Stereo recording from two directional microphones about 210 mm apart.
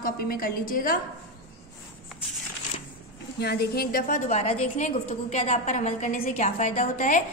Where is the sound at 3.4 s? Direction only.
50° left (ahead or behind).